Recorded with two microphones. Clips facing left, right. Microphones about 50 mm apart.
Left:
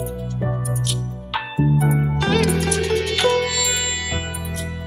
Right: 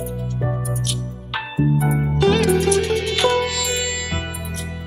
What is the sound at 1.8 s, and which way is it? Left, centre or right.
Music, centre.